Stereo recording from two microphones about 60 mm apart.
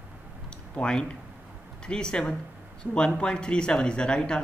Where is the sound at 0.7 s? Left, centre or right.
Centre.